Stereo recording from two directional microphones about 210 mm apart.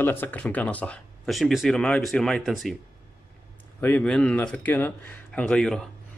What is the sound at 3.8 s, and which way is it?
Speech, 5° left (ahead or behind).